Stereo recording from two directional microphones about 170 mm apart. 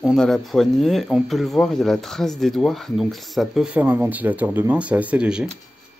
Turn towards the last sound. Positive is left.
turn(degrees=-5)  # may be behind; listen again after turning